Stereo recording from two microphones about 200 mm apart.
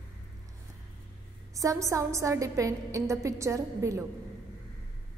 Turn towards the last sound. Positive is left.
turn(degrees=-15)  # may be behind; listen again after turning